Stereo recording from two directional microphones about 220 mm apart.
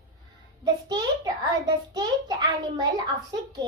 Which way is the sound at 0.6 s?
15° right (ahead or behind).